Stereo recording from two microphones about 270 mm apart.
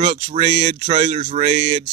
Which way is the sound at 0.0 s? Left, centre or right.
Right.